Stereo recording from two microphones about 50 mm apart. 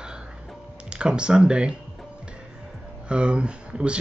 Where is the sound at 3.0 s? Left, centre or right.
Right.